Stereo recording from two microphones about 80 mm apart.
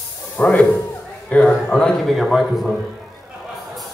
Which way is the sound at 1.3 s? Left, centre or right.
Centre.